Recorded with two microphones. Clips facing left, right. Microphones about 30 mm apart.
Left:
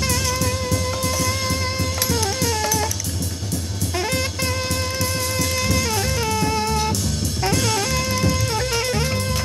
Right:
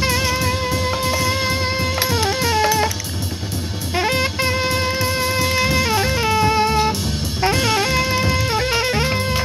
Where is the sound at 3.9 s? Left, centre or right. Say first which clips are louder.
Right 5 dB; right.